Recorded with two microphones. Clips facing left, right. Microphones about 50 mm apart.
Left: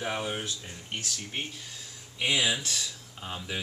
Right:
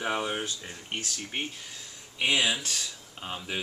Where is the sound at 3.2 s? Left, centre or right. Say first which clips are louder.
Right 1 dB; centre.